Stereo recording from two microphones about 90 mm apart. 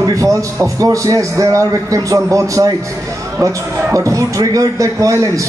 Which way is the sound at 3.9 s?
35° right (ahead or behind).